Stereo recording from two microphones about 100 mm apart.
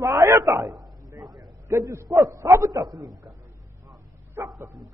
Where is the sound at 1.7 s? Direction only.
35° right (ahead or behind).